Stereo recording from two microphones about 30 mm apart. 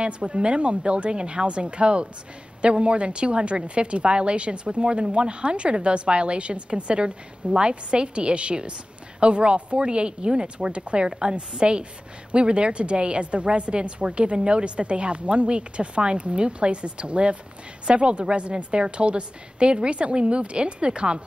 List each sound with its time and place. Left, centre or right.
0.0 s a woman's voice: right